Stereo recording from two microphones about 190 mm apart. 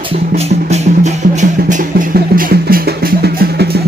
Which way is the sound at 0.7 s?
40° right (ahead or behind).